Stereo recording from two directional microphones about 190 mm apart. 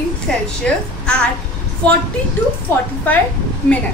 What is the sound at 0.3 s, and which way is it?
Speech, 5° left (ahead or behind).